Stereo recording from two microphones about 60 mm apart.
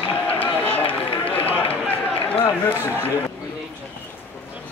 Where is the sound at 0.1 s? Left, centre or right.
Left.